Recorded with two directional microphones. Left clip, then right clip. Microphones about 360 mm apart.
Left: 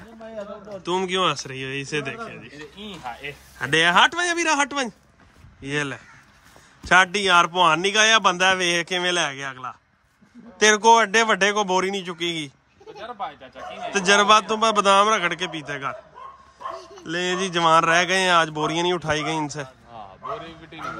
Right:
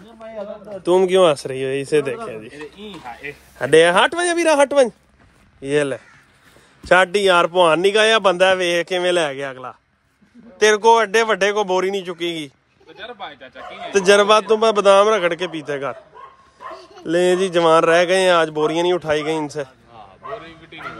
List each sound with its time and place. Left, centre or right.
0.8 s a man's voice: centre
13.9 s a man's voice: centre
17.0 s a man's voice: centre
19.9 s a sound: left